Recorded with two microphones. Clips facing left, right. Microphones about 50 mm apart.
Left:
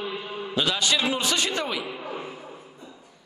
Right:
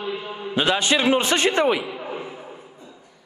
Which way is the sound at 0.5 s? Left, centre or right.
Right.